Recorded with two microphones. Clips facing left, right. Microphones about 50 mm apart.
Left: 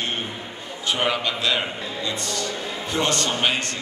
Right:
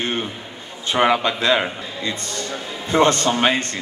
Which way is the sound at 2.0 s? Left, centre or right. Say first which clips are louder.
Right 2 dB; right.